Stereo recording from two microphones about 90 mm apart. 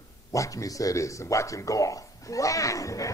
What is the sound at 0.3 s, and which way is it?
A man's voice, 35° left (ahead or behind).